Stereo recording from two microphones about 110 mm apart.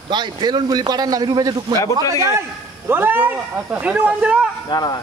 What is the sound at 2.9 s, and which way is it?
Speech, 20° right (ahead or behind).